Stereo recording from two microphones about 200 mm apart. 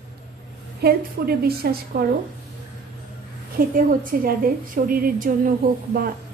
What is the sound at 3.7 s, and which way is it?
A woman's voice, 45° right (ahead or behind).